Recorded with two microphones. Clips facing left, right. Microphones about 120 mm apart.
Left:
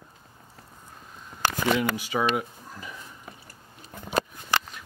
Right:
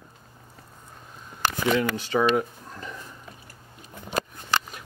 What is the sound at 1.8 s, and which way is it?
Speech, 10° left (ahead or behind).